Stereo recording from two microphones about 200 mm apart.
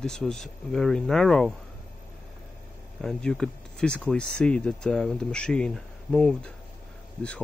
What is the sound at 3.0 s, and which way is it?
Speech, 5° left (ahead or behind).